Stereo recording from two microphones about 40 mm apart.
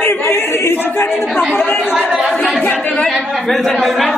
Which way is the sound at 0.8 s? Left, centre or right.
Left.